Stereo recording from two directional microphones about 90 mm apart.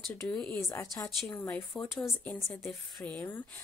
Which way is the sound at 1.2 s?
20° left (ahead or behind).